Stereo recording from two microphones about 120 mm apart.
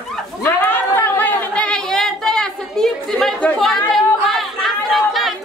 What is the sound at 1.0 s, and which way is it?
Chatter, 15° left (ahead or behind).